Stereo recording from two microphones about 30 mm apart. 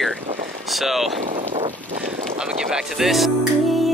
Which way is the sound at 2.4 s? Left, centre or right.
Right.